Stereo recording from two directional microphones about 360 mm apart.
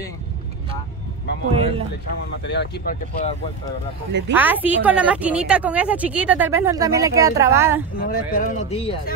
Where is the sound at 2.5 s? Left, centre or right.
Left.